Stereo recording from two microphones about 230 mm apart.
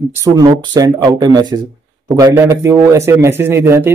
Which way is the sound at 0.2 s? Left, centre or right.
Centre.